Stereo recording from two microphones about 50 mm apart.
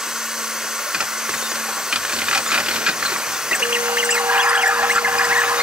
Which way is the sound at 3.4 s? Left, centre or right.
Right.